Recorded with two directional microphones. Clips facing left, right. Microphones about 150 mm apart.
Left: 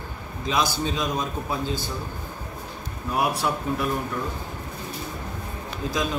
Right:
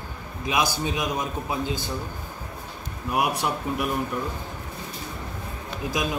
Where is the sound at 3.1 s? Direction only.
15° right (ahead or behind).